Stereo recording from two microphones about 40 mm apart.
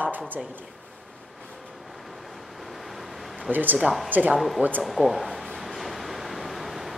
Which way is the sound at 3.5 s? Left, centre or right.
Right.